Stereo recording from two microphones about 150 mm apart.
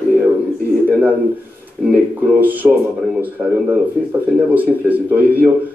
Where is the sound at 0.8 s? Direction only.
10° right (ahead or behind).